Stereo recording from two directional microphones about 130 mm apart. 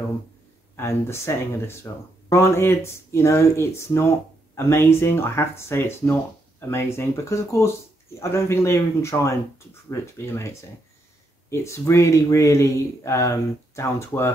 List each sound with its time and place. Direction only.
0.7 s speech: 20° left (ahead or behind)